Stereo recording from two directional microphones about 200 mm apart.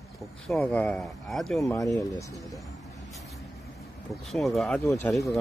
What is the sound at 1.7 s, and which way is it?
Speech, 15° left (ahead or behind).